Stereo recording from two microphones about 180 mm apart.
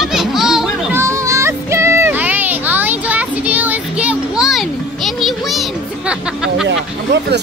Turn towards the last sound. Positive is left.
turn(degrees=-75)  # may be behind; listen again after turning